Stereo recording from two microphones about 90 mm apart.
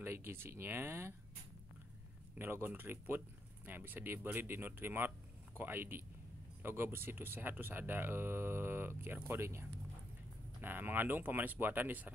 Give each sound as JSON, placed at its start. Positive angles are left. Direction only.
{"t": 0.0, "sound": "speech", "side_deg": -25}
{"t": 2.3, "sound": "speech", "side_deg": -25}